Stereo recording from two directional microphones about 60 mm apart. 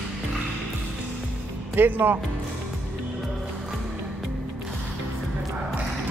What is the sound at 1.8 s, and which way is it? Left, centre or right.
Speech, right.